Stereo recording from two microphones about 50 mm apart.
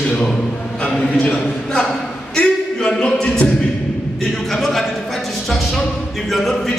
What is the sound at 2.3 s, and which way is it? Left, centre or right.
A capella, centre.